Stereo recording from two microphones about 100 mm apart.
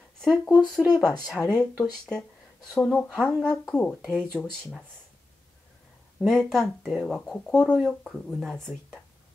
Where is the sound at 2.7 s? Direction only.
10° left (ahead or behind).